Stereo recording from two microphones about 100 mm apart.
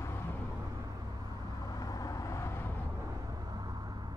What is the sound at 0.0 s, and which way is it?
Vehicle, 25° left (ahead or behind).